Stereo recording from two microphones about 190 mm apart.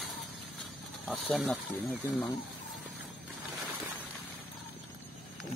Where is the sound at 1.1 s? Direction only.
5° left (ahead or behind).